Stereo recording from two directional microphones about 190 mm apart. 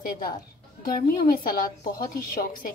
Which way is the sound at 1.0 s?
50° left (ahead or behind).